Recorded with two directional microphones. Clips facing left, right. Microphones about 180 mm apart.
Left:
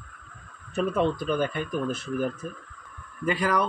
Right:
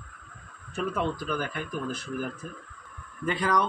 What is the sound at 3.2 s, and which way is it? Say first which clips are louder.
Speech: left 2 dB; 10° left (ahead or behind).